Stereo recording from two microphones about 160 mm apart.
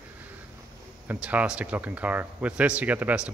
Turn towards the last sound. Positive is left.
turn(degrees=-5)  # may be behind; listen again after turning